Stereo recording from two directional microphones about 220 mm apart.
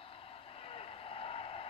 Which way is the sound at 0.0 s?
25° left (ahead or behind).